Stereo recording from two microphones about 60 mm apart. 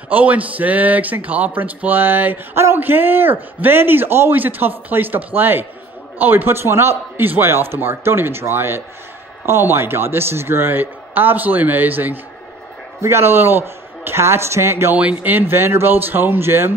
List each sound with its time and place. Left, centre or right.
0.1 s a man's voice: right
13.0 s a man's voice: right
15.0 s a man's voice: right
15.3 s a man's voice: right